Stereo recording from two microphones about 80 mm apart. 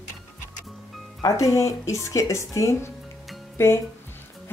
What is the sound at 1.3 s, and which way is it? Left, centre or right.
Speech, left.